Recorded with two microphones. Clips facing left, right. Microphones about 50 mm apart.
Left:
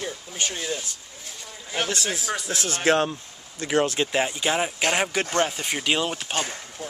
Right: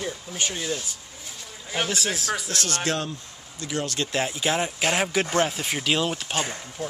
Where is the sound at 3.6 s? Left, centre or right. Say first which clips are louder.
Left 7 dB; left.